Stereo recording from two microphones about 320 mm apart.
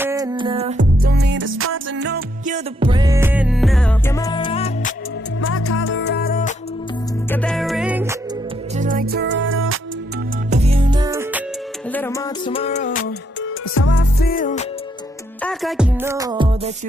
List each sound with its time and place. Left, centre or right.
0.0 s music: centre
5.4 s music: left
7.2 s music: centre
8.7 s music: right
10.5 s music: centre
11.9 s music: centre
13.4 s music: left
15.4 s music: centre